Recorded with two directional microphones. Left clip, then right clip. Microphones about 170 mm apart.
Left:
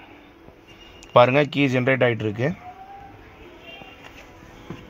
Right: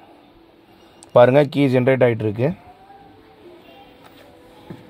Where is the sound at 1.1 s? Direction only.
75° right (ahead or behind).